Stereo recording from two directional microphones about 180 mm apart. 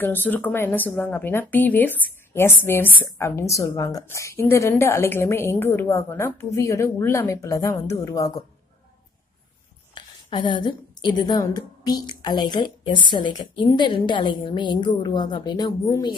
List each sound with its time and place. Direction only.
0.0 s speech: 10° left (ahead or behind)
9.9 s a woman's voice: 25° left (ahead or behind)